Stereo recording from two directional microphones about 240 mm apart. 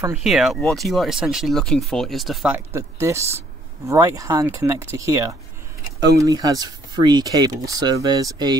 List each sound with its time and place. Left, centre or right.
0.0 s speech: centre